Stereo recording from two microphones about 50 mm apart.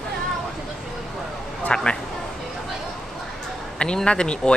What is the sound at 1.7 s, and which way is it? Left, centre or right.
Speech, left.